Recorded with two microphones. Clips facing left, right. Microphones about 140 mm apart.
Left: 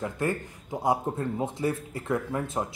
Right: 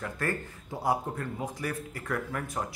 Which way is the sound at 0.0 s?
20° left (ahead or behind).